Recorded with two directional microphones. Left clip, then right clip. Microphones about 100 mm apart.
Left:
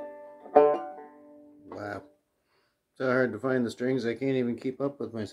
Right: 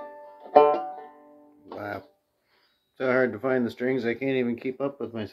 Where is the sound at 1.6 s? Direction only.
Centre (ahead or behind).